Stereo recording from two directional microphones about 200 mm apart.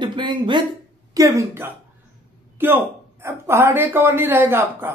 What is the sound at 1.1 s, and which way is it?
Speech, 15° right (ahead or behind).